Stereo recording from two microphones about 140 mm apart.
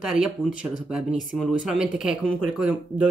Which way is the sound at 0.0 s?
5° right (ahead or behind).